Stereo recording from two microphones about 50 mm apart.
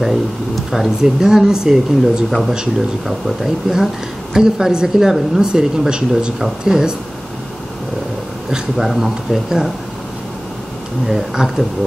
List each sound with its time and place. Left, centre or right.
0.7 s speech: centre
8.5 s speech: centre
11.1 s speech: centre